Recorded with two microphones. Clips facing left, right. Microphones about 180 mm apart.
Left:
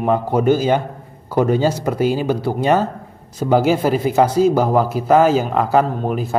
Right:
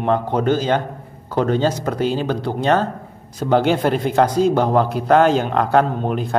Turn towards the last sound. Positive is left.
turn(degrees=5)  # may be behind; listen again after turning